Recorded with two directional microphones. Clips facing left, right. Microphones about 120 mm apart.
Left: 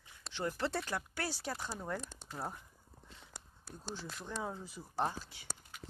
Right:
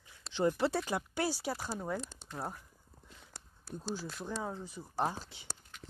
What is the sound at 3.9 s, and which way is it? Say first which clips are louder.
Speech: even; 5° right (ahead or behind).